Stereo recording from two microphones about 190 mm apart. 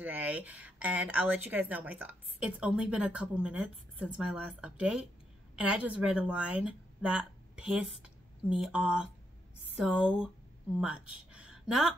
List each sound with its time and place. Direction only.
0.0 s a woman's voice: 10° right (ahead or behind)